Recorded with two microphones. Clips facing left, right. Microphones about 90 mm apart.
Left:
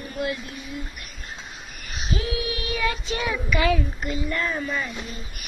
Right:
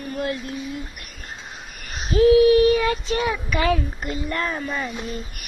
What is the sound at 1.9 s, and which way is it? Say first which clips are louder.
Child singing: right 14 dB; 40° right (ahead or behind).